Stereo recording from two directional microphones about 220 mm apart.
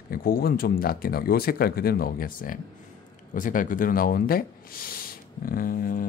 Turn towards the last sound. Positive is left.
turn(degrees=40)  # may be behind; listen again after turning